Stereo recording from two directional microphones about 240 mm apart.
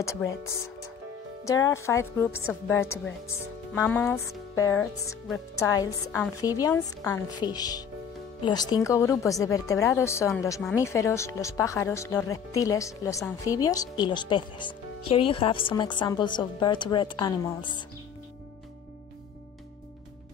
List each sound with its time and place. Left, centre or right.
0.0 s speech: centre